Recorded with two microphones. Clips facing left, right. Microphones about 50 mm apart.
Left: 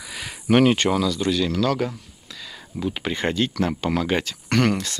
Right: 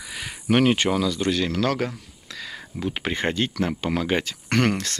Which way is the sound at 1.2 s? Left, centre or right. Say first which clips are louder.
Left 1 dB; right.